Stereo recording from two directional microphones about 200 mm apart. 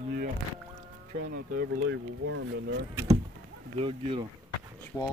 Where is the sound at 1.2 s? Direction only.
50° right (ahead or behind).